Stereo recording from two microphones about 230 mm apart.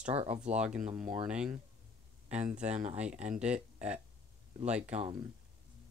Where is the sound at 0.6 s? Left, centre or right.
Centre.